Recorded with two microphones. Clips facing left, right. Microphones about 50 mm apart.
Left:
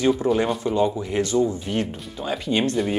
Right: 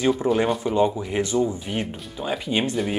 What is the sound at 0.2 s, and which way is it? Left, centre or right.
Speech, centre.